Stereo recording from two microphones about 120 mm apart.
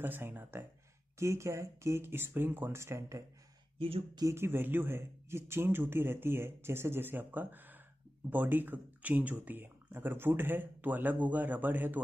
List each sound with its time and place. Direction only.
0.0 s speech: 15° right (ahead or behind)
3.7 s speech: 50° right (ahead or behind)
4.2 s speech: 25° right (ahead or behind)